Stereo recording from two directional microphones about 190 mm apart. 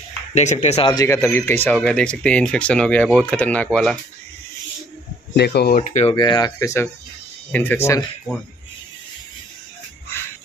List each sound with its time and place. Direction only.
0.3 s speech: 35° left (ahead or behind)
0.9 s speech: 15° left (ahead or behind)
5.3 s speech: 60° left (ahead or behind)
5.8 s speech: 35° left (ahead or behind)
6.1 s speech: 20° left (ahead or behind)